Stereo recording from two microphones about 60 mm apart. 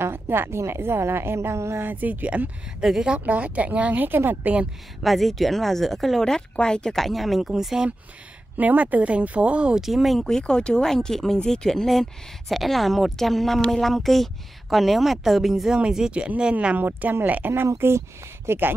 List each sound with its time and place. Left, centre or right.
0.0 s a woman's voice: right
1.9 s speech: right
2.8 s speech: centre
3.3 s speech: right
5.0 s speech: centre
8.5 s speech: right
9.8 s speech: centre
10.2 s speech: centre
16.7 s speech: right
17.7 s a woman's voice: right